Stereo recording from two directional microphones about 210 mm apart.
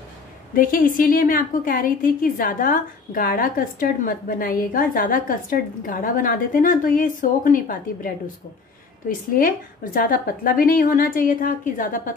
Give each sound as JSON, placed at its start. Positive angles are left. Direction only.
{"t": 0.6, "sound": "a woman's voice", "side_deg": 40}
{"t": 9.3, "sound": "a woman's voice", "side_deg": 40}